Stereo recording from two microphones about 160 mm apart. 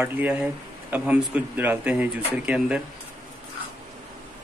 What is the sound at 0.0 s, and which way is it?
Speech, 10° right (ahead or behind).